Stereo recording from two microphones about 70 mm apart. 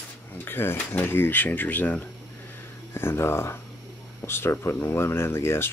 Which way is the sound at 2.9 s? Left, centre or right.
Left.